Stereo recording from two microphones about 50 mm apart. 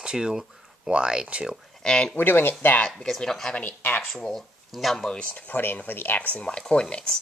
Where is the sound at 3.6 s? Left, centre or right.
Left.